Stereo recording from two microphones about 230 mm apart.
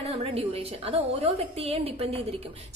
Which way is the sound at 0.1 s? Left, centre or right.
Right.